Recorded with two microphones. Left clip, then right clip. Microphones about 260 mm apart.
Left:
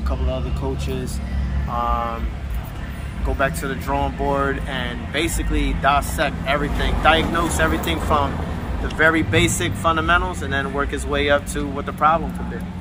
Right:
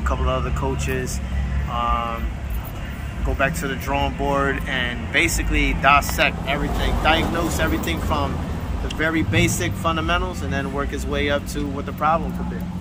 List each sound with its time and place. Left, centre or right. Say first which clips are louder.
1.8 s speech: even; centre
3.3 s speech: even; centre